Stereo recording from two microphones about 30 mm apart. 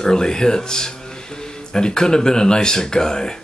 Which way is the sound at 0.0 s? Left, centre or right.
Left.